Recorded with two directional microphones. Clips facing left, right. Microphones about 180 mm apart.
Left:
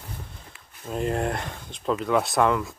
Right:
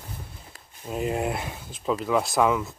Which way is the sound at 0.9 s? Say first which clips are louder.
Left 1 dB; 5° right (ahead or behind).